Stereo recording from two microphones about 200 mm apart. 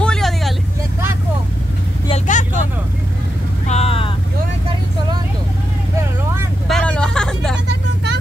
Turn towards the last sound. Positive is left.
turn(degrees=5)  # may be behind; listen again after turning